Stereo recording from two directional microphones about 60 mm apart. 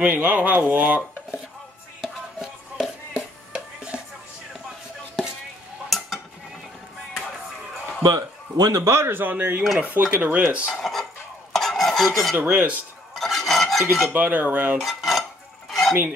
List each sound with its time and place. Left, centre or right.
0.0 s speech: right
2.0 s music: centre
5.9 s stir: centre
8.0 s a man's voice: right
9.2 s speech: right
10.8 s dishes: centre
11.5 s stir: centre
12.4 s speech: centre
13.1 s stir: centre
14.1 s speech: right
14.8 s dishes: centre
15.7 s a sound: centre